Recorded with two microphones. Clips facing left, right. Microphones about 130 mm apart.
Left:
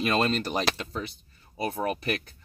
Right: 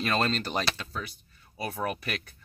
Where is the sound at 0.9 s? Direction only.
25° left (ahead or behind).